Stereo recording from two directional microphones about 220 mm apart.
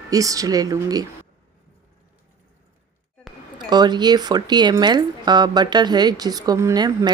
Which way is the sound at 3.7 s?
20° right (ahead or behind).